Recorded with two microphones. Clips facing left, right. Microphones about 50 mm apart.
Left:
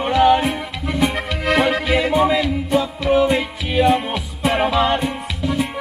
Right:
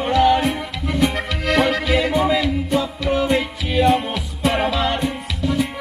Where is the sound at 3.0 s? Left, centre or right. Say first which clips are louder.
Left 4 dB; centre.